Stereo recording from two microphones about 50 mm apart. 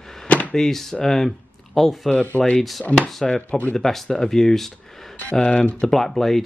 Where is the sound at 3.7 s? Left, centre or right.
Centre.